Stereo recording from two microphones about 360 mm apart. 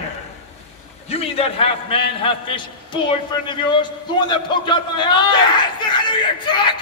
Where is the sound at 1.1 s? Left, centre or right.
Centre.